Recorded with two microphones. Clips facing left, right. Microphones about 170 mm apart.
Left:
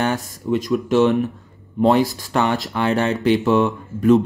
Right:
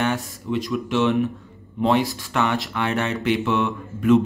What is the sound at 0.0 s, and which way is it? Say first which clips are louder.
Speech: left 2 dB; 40° left (ahead or behind).